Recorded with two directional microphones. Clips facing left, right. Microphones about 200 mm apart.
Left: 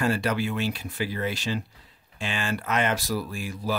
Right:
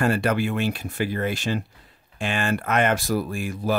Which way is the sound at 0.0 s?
55° right (ahead or behind).